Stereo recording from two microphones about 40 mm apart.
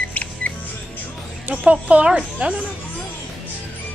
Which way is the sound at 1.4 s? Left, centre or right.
Right.